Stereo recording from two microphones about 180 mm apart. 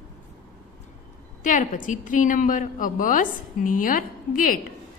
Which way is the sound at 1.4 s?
45° left (ahead or behind).